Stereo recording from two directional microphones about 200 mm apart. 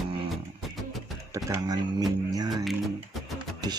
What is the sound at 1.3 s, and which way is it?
Speech, 15° right (ahead or behind).